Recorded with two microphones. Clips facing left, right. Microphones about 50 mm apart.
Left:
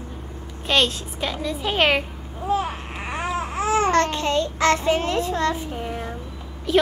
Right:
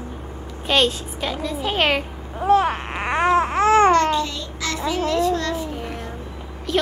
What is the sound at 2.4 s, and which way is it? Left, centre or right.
Babbling, right.